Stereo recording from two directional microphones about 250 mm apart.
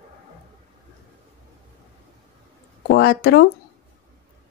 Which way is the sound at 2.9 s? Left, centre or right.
Left.